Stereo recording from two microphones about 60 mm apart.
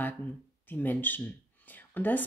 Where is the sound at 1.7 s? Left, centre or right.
Left.